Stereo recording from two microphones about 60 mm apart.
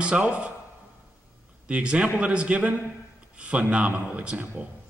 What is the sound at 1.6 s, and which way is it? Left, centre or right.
A man's voice, centre.